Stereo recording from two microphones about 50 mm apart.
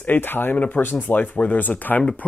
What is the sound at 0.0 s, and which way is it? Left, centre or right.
Speech, left.